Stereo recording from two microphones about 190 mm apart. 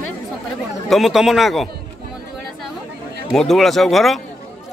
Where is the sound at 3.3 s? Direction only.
Centre (ahead or behind).